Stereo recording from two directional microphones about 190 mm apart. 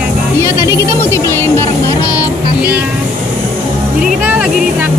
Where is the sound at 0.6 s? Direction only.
15° left (ahead or behind).